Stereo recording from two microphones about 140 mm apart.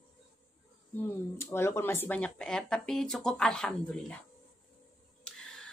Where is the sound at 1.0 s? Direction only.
20° left (ahead or behind).